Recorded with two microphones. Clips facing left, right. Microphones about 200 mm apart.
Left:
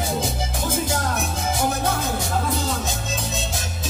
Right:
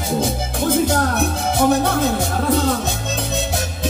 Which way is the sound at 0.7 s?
60° right (ahead or behind).